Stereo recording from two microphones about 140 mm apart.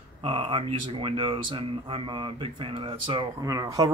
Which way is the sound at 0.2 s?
40° right (ahead or behind).